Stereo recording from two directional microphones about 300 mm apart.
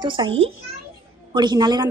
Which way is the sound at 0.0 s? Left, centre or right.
Centre.